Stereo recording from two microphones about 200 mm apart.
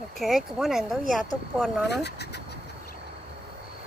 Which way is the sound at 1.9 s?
55° left (ahead or behind).